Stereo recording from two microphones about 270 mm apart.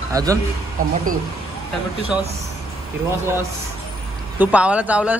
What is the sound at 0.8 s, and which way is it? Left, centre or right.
Speech, right.